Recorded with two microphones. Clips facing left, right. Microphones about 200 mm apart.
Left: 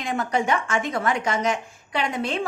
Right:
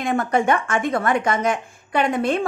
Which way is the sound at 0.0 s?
55° right (ahead or behind).